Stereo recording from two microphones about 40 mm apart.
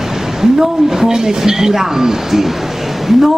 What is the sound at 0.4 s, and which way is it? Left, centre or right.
A woman's voice, centre.